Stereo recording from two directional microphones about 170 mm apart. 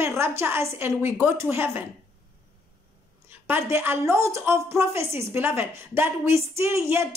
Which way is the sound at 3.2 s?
10° right (ahead or behind).